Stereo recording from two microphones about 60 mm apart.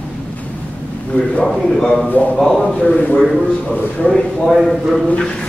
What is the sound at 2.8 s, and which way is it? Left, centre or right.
Speech, left.